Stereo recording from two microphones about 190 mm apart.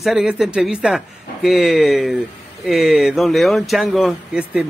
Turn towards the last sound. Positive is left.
turn(degrees=-5)  # may be behind; listen again after turning